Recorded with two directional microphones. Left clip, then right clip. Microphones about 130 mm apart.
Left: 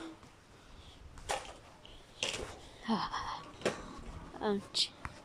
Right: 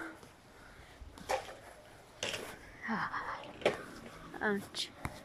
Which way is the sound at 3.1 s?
45° left (ahead or behind).